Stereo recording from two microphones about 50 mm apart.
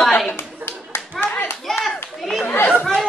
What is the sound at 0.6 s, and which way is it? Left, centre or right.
Clapping, right.